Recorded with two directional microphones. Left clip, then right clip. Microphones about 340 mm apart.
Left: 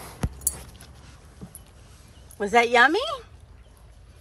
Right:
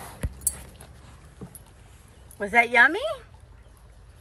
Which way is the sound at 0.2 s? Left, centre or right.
Centre.